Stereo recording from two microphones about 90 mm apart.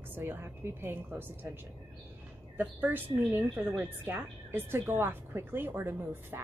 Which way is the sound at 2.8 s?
20° right (ahead or behind).